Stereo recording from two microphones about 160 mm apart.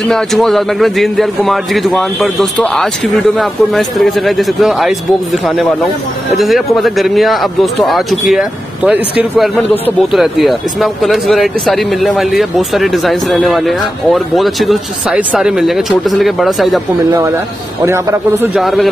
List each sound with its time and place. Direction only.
0.1 s speech: centre (ahead or behind)
10.1 s speech: centre (ahead or behind)
17.8 s a man's voice: 15° right (ahead or behind)
18.5 s speech: centre (ahead or behind)